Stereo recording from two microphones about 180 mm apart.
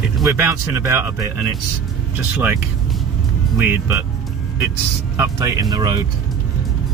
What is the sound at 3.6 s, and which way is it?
Speech, 15° right (ahead or behind).